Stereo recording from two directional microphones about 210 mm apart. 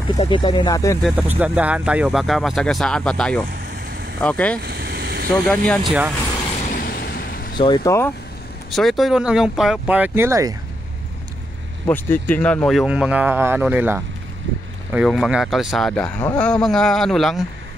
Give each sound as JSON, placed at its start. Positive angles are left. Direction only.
{"t": 0.2, "sound": "speech", "side_deg": 25}
{"t": 1.0, "sound": "speech", "side_deg": -5}
{"t": 4.6, "sound": "vehicle", "side_deg": -50}
{"t": 5.3, "sound": "speech", "side_deg": 5}
{"t": 6.7, "sound": "vehicle", "side_deg": 45}
{"t": 7.5, "sound": "speech", "side_deg": 20}
{"t": 8.7, "sound": "speech", "side_deg": 0}
{"t": 11.9, "sound": "speech", "side_deg": 10}